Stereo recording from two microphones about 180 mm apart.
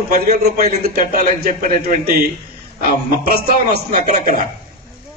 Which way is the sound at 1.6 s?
55° right (ahead or behind).